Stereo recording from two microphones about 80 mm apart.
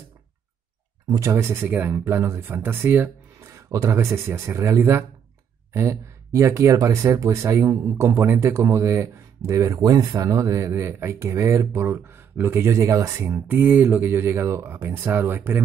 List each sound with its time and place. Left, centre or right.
1.0 s speech: right
1.3 s speech: right
3.5 s speech: right
9.8 s speech: right
13.3 s speech: right